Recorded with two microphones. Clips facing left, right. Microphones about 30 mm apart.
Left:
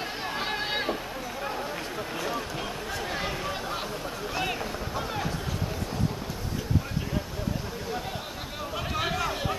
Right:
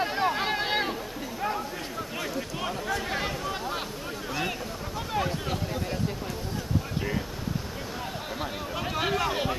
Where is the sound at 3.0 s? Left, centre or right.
Centre.